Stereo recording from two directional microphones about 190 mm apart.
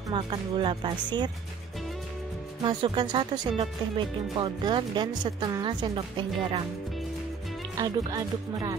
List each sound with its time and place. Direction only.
0.1 s speech: 25° right (ahead or behind)
2.6 s speech: 25° right (ahead or behind)
7.8 s speech: 20° right (ahead or behind)